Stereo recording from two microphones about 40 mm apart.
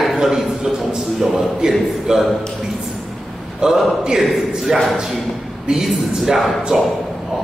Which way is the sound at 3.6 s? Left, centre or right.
Centre.